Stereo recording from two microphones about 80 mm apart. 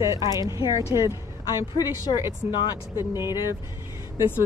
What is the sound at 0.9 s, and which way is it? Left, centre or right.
Speech, left.